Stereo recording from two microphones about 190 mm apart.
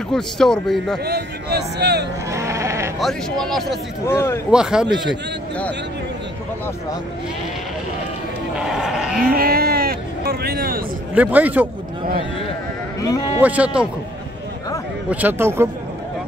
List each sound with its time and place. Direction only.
0.1 s speech: 5° left (ahead or behind)
1.0 s speech: 55° right (ahead or behind)
2.3 s sheep: 15° right (ahead or behind)
3.0 s speech: centre (ahead or behind)
4.0 s speech: 15° left (ahead or behind)
4.5 s speech: 5° right (ahead or behind)
8.5 s speech: centre (ahead or behind)
9.2 s speech: 50° right (ahead or behind)
11.1 s speech: 10° right (ahead or behind)
13.4 s speech: 5° right (ahead or behind)
15.0 s speech: 10° right (ahead or behind)